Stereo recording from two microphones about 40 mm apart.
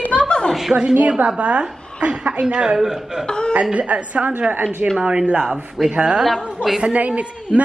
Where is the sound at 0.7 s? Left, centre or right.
Right.